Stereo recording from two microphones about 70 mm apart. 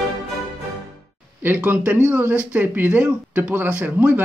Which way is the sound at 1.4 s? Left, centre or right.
Right.